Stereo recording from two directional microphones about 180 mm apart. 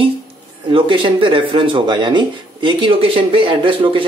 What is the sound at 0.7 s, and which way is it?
A man's voice, 30° right (ahead or behind).